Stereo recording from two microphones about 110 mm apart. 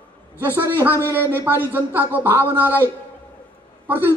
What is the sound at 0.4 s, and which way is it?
A man's voice, 20° right (ahead or behind).